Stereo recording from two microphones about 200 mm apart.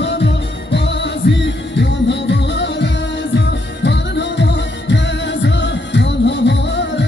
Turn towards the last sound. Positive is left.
turn(degrees=60)  # may be behind; listen again after turning